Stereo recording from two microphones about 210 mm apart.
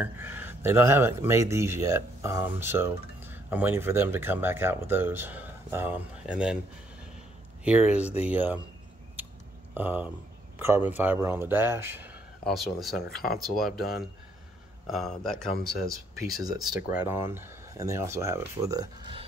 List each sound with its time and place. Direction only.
0.0 s speech: 10° right (ahead or behind)
7.6 s speech: 5° right (ahead or behind)
9.8 s speech: 10° right (ahead or behind)
16.3 s speech: 20° right (ahead or behind)
16.6 s speech: 5° right (ahead or behind)